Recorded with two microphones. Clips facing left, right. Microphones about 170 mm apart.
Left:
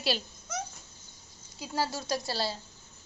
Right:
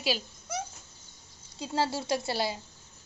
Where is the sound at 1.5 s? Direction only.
25° right (ahead or behind).